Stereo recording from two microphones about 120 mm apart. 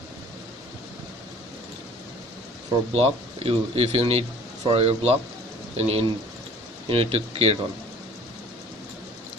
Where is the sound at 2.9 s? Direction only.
55° right (ahead or behind).